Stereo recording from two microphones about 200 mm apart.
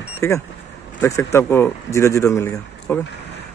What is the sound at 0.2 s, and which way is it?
A man's voice, 15° left (ahead or behind).